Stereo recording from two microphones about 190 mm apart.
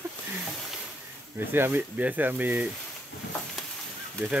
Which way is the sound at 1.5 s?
10° right (ahead or behind).